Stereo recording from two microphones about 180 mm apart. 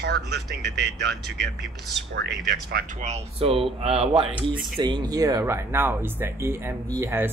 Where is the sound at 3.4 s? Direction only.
30° right (ahead or behind).